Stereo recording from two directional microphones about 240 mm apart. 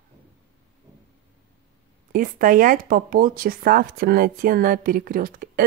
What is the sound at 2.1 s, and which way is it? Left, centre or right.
Speech, right.